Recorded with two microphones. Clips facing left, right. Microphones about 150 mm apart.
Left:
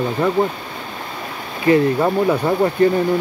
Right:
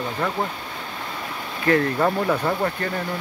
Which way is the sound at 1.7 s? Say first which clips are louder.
Left 5 dB; 15° left (ahead or behind).